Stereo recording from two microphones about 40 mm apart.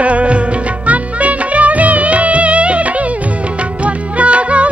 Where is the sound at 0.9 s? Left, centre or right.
Right.